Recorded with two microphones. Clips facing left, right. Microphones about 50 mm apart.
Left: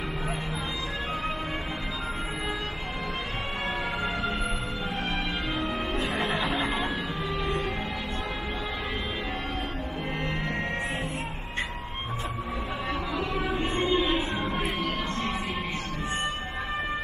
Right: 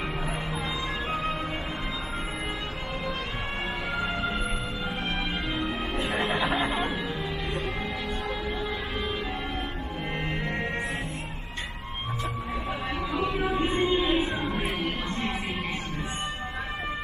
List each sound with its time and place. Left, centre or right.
5.9 s music: centre
13.1 s music: centre